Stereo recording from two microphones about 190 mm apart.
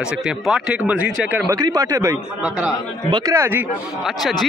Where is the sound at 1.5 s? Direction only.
20° right (ahead or behind).